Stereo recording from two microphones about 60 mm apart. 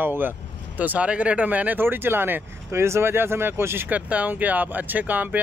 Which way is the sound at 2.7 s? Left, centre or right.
Right.